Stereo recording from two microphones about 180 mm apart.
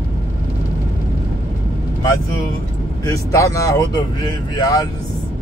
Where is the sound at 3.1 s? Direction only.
15° left (ahead or behind).